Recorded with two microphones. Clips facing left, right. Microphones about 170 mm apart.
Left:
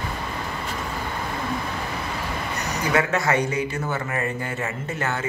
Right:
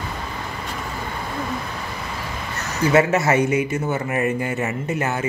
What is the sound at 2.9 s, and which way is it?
Speech, 25° right (ahead or behind).